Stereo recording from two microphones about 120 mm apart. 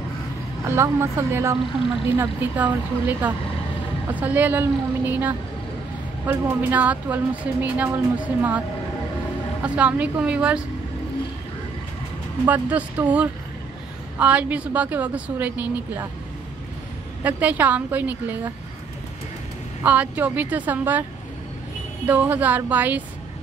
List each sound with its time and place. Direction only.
0.7 s a woman's voice: 20° right (ahead or behind)
12.4 s a woman's voice: 15° right (ahead or behind)
17.2 s a woman's voice: 15° right (ahead or behind)
19.8 s a woman's voice: 15° right (ahead or behind)
22.0 s a woman's voice: 15° right (ahead or behind)